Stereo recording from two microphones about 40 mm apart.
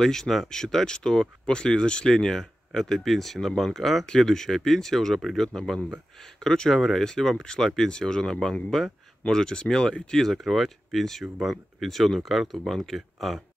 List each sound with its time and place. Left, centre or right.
0.0 s speech: centre
6.7 s speech: centre